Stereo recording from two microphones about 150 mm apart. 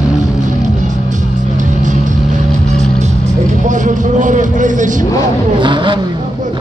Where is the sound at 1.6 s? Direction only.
55° right (ahead or behind).